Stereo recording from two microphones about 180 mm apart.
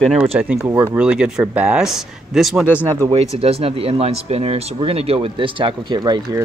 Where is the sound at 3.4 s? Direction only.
35° right (ahead or behind).